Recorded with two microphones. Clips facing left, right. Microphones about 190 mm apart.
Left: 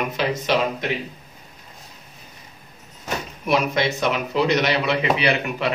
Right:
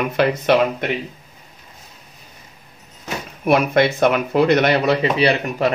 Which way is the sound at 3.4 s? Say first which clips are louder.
Right 6 dB; 55° right (ahead or behind).